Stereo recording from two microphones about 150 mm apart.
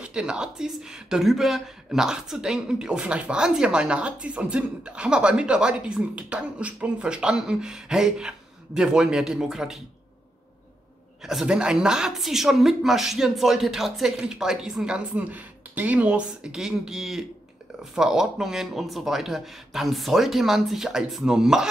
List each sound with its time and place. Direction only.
0.0 s speech: 5° right (ahead or behind)
11.2 s speech: 5° right (ahead or behind)